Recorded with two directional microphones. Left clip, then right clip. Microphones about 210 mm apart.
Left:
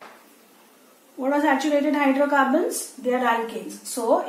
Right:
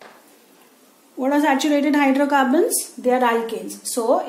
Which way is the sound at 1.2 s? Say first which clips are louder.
Right 3 dB; 45° right (ahead or behind).